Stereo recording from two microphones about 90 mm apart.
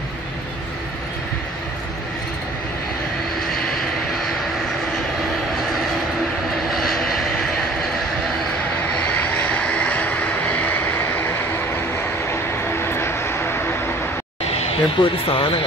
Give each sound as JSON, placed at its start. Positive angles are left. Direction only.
{"t": 6.7, "sound": "vehicle", "side_deg": 0}
{"t": 9.2, "sound": "vehicle", "side_deg": 15}
{"t": 12.8, "sound": "vehicle", "side_deg": 25}
{"t": 14.5, "sound": "a sound", "side_deg": 85}